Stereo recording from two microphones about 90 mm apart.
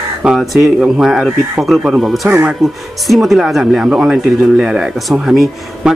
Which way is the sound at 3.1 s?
Centre (ahead or behind).